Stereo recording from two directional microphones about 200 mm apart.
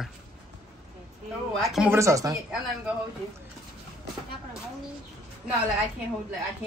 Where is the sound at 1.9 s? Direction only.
15° right (ahead or behind).